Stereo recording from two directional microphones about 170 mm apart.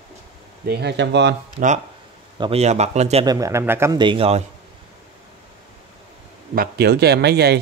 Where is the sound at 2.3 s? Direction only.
35° right (ahead or behind).